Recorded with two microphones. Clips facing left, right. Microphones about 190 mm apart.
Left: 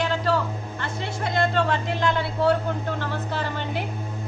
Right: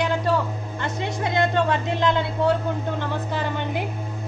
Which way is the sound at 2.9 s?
15° right (ahead or behind).